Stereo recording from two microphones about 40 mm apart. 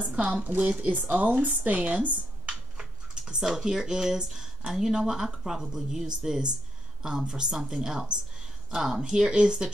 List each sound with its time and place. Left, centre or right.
0.1 s speech: right
0.4 s a woman's voice: right
2.8 s speech: right